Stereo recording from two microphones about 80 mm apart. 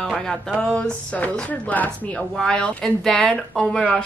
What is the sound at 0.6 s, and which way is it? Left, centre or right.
Speech, centre.